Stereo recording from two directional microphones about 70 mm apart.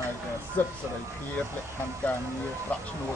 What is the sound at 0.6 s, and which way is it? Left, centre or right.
Speech, left.